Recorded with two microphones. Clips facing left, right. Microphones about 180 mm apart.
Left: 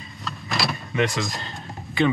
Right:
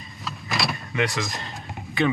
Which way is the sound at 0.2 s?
Centre (ahead or behind).